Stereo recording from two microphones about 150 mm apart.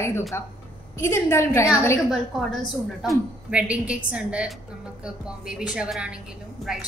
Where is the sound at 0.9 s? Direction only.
15° left (ahead or behind).